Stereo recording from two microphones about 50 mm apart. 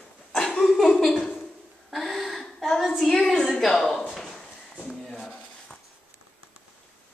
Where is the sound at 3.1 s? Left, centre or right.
Centre.